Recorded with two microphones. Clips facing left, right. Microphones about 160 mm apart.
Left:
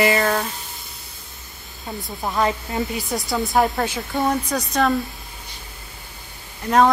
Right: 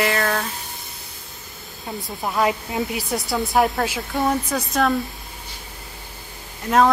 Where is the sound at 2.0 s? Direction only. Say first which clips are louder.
Even; 5° right (ahead or behind).